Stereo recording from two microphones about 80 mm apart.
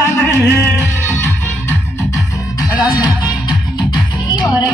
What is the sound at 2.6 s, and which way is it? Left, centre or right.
Music, left.